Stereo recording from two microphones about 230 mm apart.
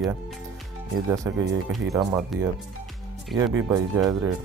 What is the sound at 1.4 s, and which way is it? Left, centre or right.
Speech, right.